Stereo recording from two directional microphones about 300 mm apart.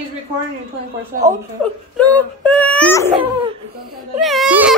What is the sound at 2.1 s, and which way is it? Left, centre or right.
Baby cry, centre.